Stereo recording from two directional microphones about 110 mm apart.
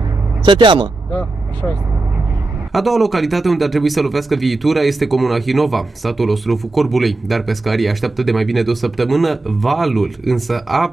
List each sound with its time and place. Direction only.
0.5 s speech: 50° right (ahead or behind)
2.7 s a man's voice: centre (ahead or behind)